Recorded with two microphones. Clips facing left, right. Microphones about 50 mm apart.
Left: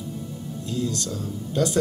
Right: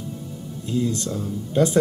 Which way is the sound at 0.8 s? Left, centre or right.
Right.